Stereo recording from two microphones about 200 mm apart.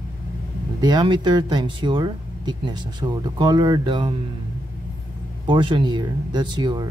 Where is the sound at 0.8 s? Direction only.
20° right (ahead or behind).